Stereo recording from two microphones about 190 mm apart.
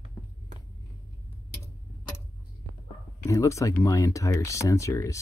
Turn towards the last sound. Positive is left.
turn(degrees=15)  # may be behind; listen again after turning